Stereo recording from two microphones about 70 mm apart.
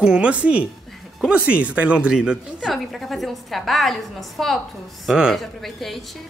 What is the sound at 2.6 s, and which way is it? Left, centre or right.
Speech, centre.